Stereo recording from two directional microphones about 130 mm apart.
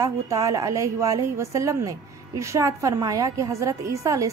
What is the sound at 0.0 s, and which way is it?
A woman's voice, 25° right (ahead or behind).